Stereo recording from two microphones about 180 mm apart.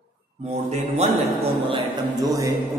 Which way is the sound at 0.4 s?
35° right (ahead or behind).